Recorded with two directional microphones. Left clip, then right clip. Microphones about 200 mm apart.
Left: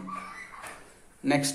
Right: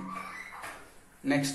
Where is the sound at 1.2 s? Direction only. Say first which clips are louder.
Left 3 dB; 50° left (ahead or behind).